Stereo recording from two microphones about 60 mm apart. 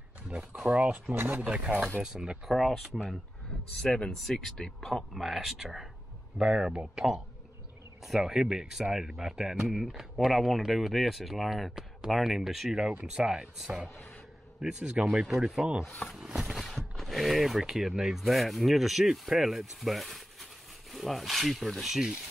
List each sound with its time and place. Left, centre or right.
0.7 s speech: right
1.1 s speech: right
1.4 s speech: centre
2.5 s speech: centre
3.8 s speech: centre
8.0 s speech: centre
13.8 s speech: left
14.6 s speech: centre
16.0 s speech: centre